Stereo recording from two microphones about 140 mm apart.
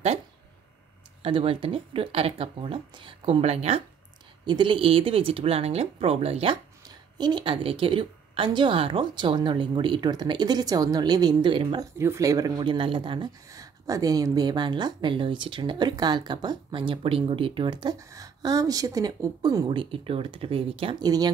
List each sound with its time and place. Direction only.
1.2 s speech: 40° right (ahead or behind)
11.8 s speech: 20° right (ahead or behind); by 13.3 s 35° right (ahead or behind)
13.5 s speech: 25° right (ahead or behind)
19.7 s speech: 40° right (ahead or behind)
21.0 s speech: 30° right (ahead or behind)